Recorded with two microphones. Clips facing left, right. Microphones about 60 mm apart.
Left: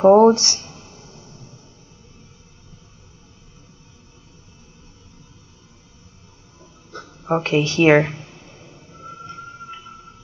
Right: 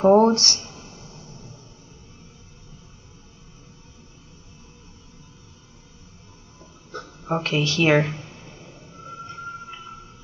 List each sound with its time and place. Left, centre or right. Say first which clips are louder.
0.0 s speech: left 4 dB; centre
7.2 s speech: left 5 dB; left